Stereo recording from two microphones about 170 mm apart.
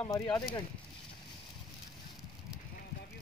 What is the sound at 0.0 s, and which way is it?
Speech, 25° left (ahead or behind).